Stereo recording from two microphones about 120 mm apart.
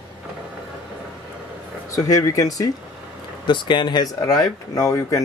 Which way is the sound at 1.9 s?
30° left (ahead or behind).